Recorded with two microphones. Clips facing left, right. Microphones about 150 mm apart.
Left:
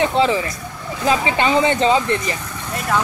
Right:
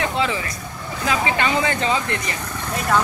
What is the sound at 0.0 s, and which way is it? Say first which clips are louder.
Speech: left 6 dB; 30° left (ahead or behind).